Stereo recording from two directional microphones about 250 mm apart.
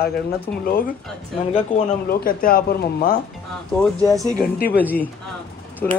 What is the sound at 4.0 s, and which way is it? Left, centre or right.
Speech, centre.